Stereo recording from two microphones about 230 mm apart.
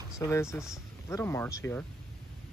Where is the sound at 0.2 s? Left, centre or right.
Centre.